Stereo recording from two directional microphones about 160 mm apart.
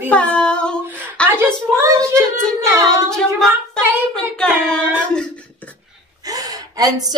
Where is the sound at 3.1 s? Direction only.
5° left (ahead or behind).